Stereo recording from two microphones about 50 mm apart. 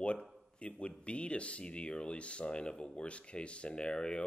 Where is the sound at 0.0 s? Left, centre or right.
Left.